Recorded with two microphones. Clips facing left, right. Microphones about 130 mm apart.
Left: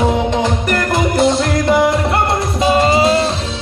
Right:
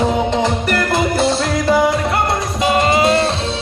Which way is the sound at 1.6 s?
Centre (ahead or behind).